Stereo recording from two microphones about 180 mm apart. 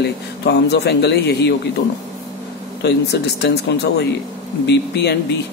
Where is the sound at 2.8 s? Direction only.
65° left (ahead or behind).